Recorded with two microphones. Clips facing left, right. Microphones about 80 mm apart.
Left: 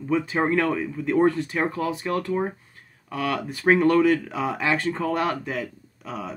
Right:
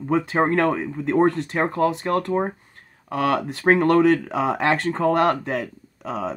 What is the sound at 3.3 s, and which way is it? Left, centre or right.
Speech, right.